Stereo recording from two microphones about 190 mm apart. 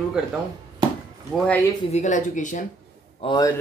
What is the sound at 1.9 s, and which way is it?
Speech, 40° left (ahead or behind).